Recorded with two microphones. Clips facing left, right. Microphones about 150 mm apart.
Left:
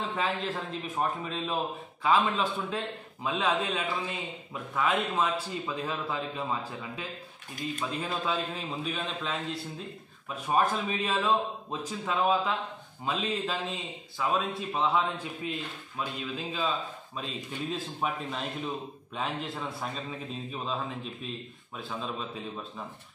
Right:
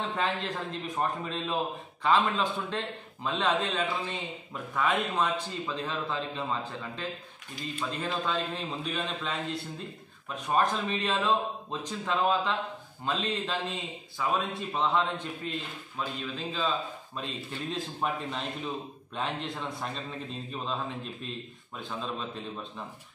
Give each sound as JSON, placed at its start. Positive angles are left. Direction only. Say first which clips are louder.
{"t": 0.0, "sound": "a man's voice", "louder": "even", "side_deg": 0}